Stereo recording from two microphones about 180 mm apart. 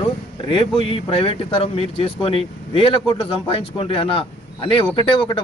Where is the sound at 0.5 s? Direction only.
30° left (ahead or behind).